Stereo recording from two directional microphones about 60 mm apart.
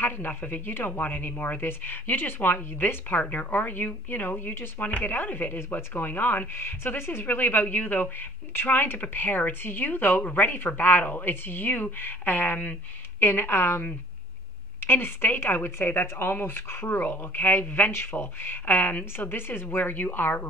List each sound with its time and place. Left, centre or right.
0.0 s speech: left